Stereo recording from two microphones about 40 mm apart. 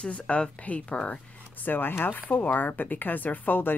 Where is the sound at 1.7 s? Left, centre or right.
Left.